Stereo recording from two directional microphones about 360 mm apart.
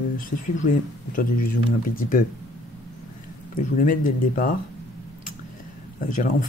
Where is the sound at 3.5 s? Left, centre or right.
Left.